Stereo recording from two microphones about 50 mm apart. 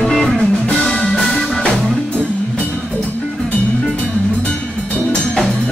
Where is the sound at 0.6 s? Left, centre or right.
Centre.